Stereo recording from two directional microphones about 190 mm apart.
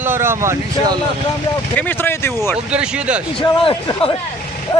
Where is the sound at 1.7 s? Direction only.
10° left (ahead or behind).